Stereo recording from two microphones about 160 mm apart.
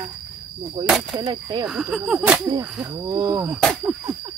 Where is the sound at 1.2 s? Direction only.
25° right (ahead or behind).